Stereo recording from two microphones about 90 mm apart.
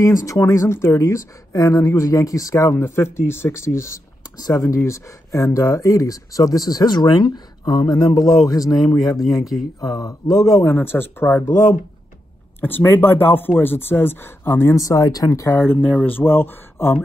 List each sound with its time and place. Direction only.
0.0 s speech: 40° left (ahead or behind)
4.4 s speech: 40° left (ahead or behind)
8.7 s speech: 5° left (ahead or behind)
9.8 s speech: 45° left (ahead or behind)
10.3 s speech: centre (ahead or behind)
10.6 s speech: 25° left (ahead or behind)
12.5 s speech: 20° left (ahead or behind)
15.5 s speech: 25° left (ahead or behind)